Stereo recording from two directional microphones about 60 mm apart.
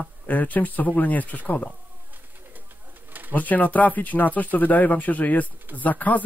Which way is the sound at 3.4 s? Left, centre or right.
Left.